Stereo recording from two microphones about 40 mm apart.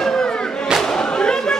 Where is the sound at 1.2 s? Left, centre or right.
Centre.